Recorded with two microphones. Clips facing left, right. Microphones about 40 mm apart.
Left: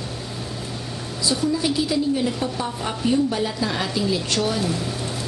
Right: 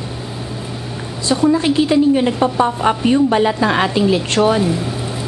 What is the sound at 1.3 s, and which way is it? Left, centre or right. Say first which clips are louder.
A woman's voice: right 8 dB; right.